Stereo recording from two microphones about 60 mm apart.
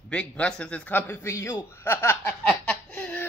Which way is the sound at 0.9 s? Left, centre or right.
Left.